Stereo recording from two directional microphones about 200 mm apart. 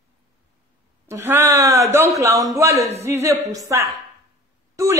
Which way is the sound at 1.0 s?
15° right (ahead or behind).